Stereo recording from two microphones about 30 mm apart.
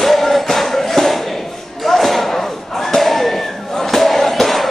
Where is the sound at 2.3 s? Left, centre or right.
Centre.